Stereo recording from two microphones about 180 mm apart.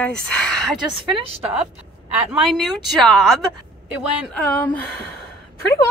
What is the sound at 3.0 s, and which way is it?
A woman's voice, centre (ahead or behind).